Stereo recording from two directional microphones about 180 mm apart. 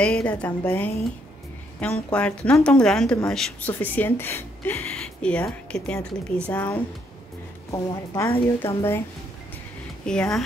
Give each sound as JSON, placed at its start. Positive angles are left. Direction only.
{"t": 0.0, "sound": "a woman's voice", "side_deg": 5}
{"t": 7.7, "sound": "speech", "side_deg": 20}
{"t": 10.0, "sound": "a woman's voice", "side_deg": 5}